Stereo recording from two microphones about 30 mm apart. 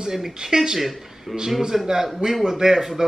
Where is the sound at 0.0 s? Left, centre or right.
Centre.